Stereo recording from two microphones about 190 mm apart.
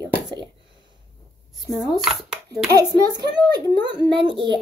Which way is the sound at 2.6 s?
20° right (ahead or behind).